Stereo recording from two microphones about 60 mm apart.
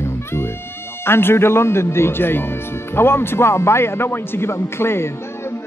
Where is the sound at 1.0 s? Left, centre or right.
Left.